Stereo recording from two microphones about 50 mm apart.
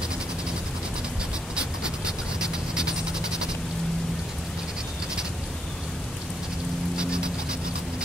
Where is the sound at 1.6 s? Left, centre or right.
Centre.